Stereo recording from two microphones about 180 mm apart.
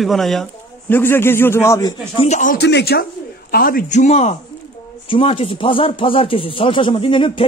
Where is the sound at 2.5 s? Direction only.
70° left (ahead or behind).